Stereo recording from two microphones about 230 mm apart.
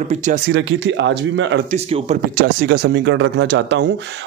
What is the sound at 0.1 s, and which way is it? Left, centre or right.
Speech, right.